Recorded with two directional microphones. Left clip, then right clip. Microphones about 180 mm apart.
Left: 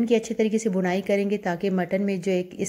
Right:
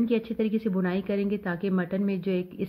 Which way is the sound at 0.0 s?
20° left (ahead or behind).